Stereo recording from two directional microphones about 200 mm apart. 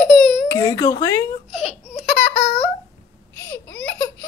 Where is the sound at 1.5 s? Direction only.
35° left (ahead or behind).